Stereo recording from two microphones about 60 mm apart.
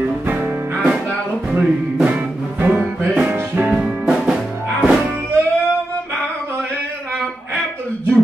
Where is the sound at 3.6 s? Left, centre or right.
Centre.